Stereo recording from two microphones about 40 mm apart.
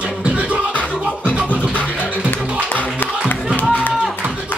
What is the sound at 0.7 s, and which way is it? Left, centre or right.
Music, left.